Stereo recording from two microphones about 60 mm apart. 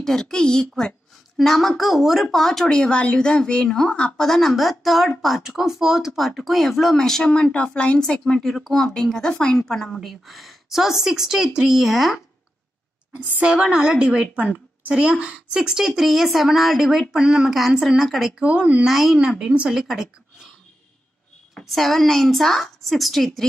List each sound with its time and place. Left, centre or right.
0.0 s a woman's voice: centre
4.3 s a woman's voice: centre
8.0 s a woman's voice: centre
13.1 s a woman's voice: right; by 18.3 s centre
18.4 s speech: right
18.9 s a woman's voice: centre
21.5 s a woman's voice: centre